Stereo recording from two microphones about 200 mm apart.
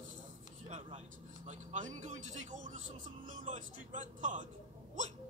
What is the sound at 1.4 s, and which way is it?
Speech, 40° right (ahead or behind).